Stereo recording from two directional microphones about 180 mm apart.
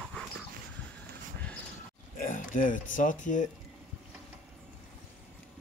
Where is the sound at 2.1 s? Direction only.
45° left (ahead or behind).